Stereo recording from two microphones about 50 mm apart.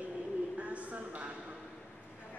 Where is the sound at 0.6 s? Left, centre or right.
Right.